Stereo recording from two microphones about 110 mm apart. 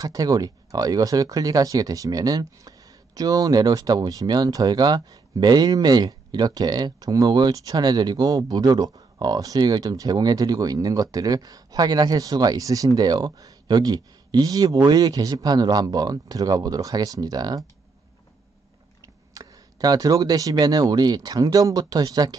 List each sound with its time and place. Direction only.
0.0 s speech: 35° right (ahead or behind)
18.9 s speech: 30° right (ahead or behind)